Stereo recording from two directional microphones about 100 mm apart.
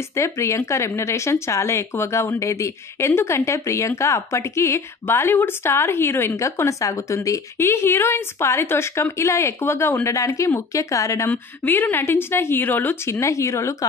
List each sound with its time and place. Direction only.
0.1 s speech: 30° left (ahead or behind)
11.2 s speech: 20° left (ahead or behind)